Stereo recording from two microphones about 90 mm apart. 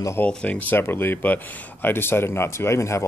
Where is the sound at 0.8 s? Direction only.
25° left (ahead or behind).